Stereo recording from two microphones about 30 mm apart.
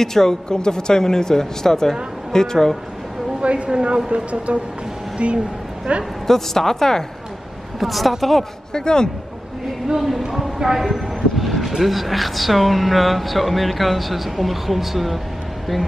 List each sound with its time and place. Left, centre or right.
0.0 s speech: centre
3.3 s a woman's voice: right
6.2 s speech: centre
7.8 s speech: centre
8.7 s speech: left
9.9 s speech: centre
10.3 s a sound: centre
11.8 s speech: centre